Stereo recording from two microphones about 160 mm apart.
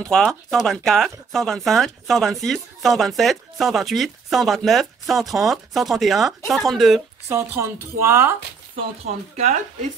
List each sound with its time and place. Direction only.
0.0 s speech: 5° left (ahead or behind)
7.2 s a woman's voice: 15° right (ahead or behind)
8.7 s speech: 40° right (ahead or behind)